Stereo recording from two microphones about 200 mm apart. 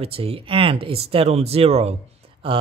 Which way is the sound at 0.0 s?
30° right (ahead or behind).